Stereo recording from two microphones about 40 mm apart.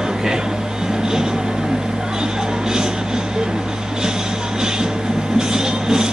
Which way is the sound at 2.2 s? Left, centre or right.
Centre.